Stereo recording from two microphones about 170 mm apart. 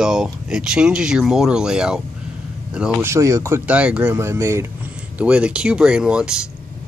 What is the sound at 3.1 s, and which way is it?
Speech, 15° right (ahead or behind).